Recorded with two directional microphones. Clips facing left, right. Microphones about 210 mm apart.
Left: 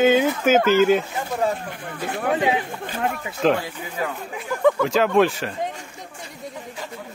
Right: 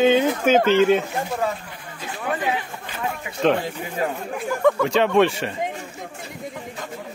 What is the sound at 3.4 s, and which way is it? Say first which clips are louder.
Speech: even; centre (ahead or behind).